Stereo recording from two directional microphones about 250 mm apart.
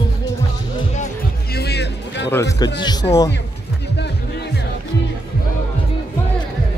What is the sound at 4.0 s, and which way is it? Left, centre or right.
Music, left.